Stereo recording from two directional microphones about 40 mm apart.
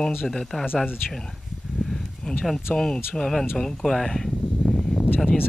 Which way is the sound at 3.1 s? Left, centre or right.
Centre.